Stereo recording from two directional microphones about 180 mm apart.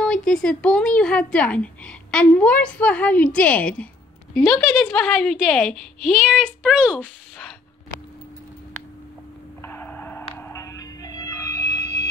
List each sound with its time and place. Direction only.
0.0 s a woman's voice: 5° left (ahead or behind)
9.6 s music: 10° left (ahead or behind)